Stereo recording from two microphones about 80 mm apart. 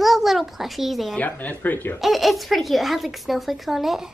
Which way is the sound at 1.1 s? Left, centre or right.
Left.